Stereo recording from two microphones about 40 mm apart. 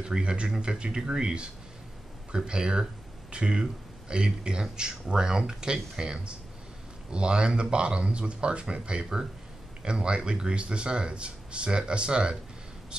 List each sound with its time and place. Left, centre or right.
0.0 s speech: right